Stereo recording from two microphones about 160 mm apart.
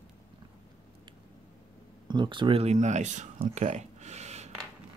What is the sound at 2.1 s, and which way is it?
Speech, 30° right (ahead or behind).